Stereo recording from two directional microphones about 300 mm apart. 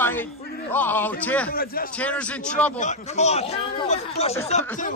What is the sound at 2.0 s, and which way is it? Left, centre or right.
Speech, centre.